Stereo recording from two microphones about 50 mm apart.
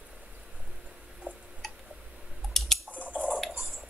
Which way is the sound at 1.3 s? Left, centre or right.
Right.